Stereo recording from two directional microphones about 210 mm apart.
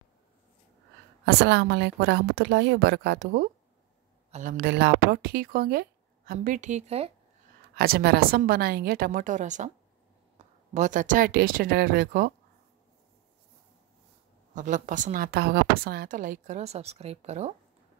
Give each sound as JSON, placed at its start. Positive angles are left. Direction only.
{"t": 1.2, "sound": "a woman's voice", "side_deg": -55}
{"t": 4.3, "sound": "speech", "side_deg": -40}
{"t": 7.7, "sound": "speech", "side_deg": -45}
{"t": 10.7, "sound": "speech", "side_deg": -35}
{"t": 14.5, "sound": "a woman's voice", "side_deg": -35}